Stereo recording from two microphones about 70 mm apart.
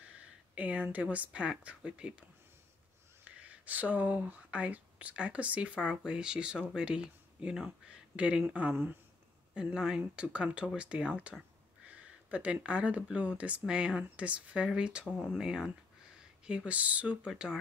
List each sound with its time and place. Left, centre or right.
0.6 s speech: centre
3.3 s speech: centre
11.9 s a sound: centre
12.6 s speech: centre